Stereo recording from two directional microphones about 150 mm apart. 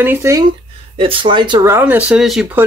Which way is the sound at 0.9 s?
35° right (ahead or behind).